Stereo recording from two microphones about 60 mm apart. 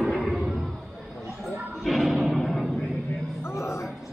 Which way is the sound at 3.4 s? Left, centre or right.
Left.